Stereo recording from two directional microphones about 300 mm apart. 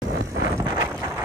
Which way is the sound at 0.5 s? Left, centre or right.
Centre.